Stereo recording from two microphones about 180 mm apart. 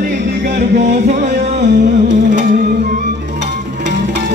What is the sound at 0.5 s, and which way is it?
Music, 45° right (ahead or behind).